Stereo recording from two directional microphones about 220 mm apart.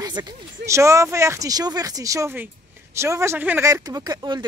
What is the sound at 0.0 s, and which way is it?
Speech, 20° right (ahead or behind).